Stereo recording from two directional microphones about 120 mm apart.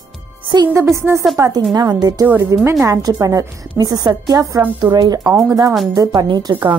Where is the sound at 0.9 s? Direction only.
25° right (ahead or behind).